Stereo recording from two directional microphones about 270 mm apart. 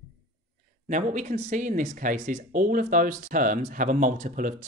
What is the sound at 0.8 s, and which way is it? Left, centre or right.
Speech, right.